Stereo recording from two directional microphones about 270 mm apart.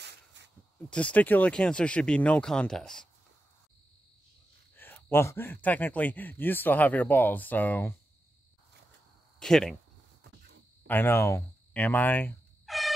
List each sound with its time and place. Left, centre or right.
0.0 s a sound: right
0.7 s speech: centre
4.7 s a man's voice: centre
9.4 s speech: centre
10.9 s fowl: centre